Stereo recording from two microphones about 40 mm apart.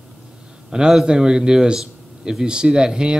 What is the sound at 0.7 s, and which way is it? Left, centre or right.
A man's voice, centre.